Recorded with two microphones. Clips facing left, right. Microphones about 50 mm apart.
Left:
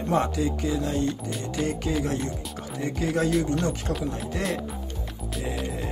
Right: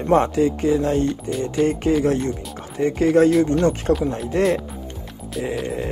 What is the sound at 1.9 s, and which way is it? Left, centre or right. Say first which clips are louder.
Speech: right 8 dB; right.